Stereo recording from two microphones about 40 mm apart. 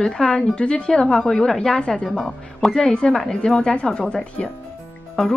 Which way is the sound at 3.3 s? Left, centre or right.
Centre.